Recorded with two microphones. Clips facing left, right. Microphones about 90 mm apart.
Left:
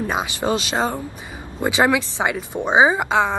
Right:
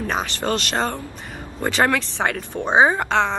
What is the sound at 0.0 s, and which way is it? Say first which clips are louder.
A woman's voice: left 2 dB; 15° left (ahead or behind).